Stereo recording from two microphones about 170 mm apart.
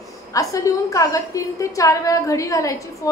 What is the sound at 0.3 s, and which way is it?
A woman's voice, 20° left (ahead or behind).